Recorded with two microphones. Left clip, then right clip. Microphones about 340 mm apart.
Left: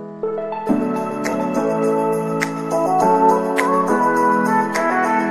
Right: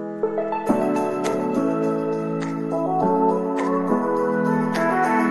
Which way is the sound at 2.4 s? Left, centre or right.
Left.